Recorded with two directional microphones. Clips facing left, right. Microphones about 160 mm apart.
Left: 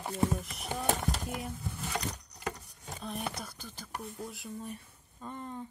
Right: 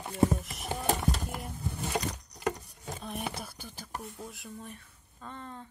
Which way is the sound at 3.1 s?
5° right (ahead or behind).